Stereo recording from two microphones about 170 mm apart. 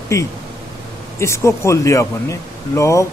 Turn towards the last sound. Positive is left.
turn(degrees=15)  # may be behind; listen again after turning